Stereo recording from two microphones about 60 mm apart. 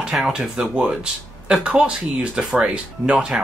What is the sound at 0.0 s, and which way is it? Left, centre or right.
Speech, centre.